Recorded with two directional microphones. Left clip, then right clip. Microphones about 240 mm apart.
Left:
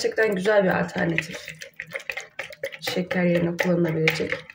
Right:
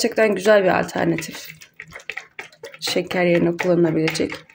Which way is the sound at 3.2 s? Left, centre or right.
Right.